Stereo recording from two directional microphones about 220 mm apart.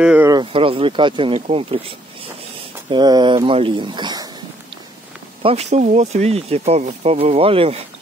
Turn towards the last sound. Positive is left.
turn(degrees=-25)  # may be behind; listen again after turning